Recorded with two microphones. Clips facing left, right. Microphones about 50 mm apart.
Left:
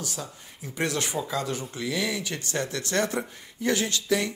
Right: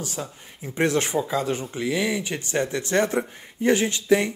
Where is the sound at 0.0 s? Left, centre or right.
Right.